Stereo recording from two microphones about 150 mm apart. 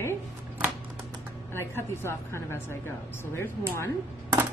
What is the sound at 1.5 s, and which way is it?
A woman's voice, 15° left (ahead or behind).